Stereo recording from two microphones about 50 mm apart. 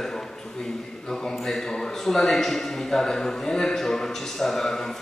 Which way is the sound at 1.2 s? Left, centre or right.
Centre.